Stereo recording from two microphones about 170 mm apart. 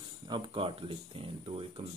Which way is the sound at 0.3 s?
30° right (ahead or behind).